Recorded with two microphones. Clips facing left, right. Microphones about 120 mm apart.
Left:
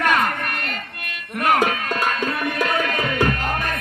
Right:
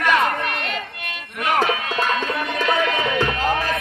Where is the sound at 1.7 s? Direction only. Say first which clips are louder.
Right 1 dB; 45° left (ahead or behind).